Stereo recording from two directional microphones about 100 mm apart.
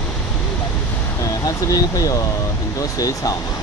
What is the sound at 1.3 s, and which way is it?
Speech, 35° left (ahead or behind).